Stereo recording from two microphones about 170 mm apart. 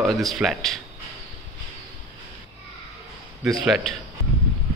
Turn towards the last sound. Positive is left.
turn(degrees=0)  # may be behind; listen again after turning